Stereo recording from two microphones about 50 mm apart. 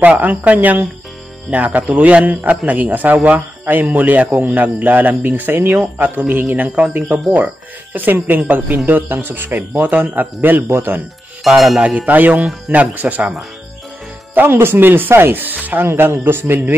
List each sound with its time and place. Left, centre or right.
0.0 s speech: right
11.4 s music: centre
11.8 s speech: right
14.3 s speech: right
15.9 s speech: right